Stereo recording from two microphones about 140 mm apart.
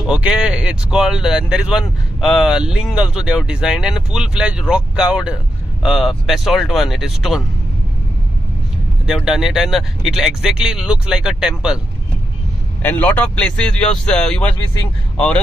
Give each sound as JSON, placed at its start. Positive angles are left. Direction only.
{"t": 0.1, "sound": "speech", "side_deg": -5}
{"t": 9.0, "sound": "speech", "side_deg": -5}
{"t": 12.8, "sound": "speech", "side_deg": 10}